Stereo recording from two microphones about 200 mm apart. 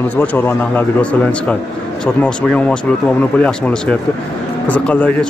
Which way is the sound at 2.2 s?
5° left (ahead or behind).